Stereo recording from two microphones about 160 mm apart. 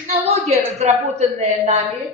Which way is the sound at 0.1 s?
40° right (ahead or behind).